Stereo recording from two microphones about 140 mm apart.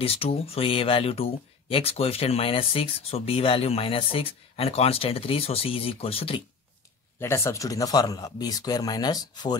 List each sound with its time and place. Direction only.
0.0 s speech: 45° left (ahead or behind)
7.2 s speech: 20° left (ahead or behind)